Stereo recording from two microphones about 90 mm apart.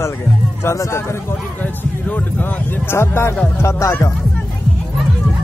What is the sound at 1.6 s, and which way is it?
A man's voice, 15° left (ahead or behind).